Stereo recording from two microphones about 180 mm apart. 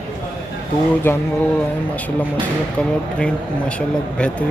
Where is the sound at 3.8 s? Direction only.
5° left (ahead or behind).